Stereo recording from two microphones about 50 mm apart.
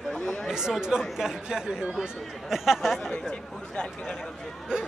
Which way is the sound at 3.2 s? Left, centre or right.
Centre.